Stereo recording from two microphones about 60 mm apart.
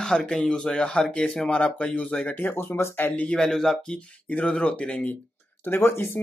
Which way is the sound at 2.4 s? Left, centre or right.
Left.